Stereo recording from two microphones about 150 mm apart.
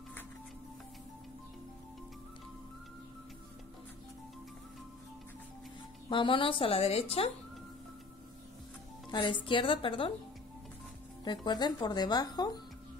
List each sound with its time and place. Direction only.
6.0 s a woman's voice: 35° left (ahead or behind)
9.1 s a woman's voice: 30° left (ahead or behind)
11.2 s speech: 30° left (ahead or behind)